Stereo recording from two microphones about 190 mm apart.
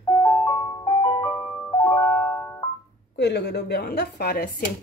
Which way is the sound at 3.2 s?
60° left (ahead or behind).